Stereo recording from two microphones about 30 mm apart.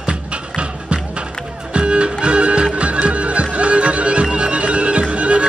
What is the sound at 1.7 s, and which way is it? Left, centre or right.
Music, right.